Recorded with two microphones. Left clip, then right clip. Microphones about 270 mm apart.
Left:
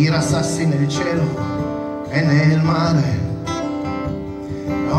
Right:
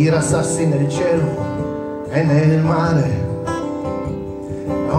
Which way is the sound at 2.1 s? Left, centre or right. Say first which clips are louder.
Right 2 dB; left.